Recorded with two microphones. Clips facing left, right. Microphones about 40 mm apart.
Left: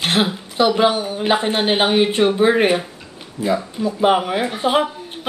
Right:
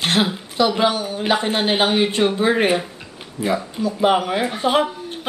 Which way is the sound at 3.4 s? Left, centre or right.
Left.